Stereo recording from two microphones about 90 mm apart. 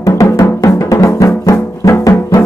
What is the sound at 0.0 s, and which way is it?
Music, 35° left (ahead or behind).